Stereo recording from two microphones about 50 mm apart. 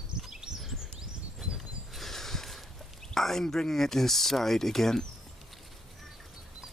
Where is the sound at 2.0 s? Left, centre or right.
Centre.